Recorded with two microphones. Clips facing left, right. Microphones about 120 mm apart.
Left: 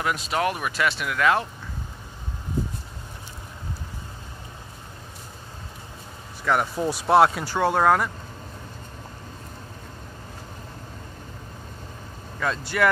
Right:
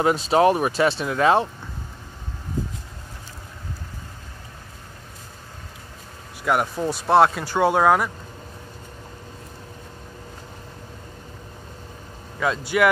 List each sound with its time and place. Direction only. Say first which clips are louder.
0.0 s speech: right 8 dB; 30° right (ahead or behind)
6.4 s speech: right 1 dB; 10° right (ahead or behind)
6.8 s speech: right 1 dB; 10° left (ahead or behind)
12.4 s speech: right 3 dB; 5° right (ahead or behind)